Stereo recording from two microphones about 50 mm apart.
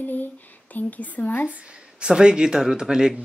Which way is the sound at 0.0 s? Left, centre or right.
Left.